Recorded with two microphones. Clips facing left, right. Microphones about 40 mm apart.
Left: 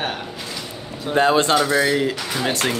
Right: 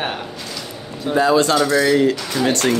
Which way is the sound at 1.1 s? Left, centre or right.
Left.